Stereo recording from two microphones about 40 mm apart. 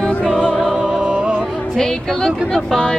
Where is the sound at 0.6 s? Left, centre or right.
Centre.